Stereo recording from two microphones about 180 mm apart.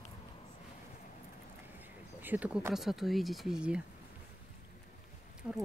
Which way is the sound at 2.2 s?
10° right (ahead or behind).